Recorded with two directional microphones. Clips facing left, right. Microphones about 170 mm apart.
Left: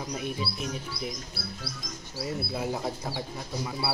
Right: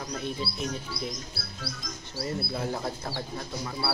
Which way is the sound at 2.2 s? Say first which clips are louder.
Even; 10° left (ahead or behind).